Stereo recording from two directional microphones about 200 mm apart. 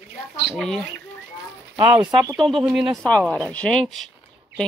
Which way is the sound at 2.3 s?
Centre (ahead or behind).